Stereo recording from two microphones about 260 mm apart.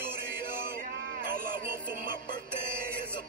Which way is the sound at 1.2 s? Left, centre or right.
Right.